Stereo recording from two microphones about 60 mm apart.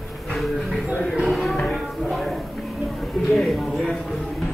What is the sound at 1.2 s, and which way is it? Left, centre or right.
Music, centre.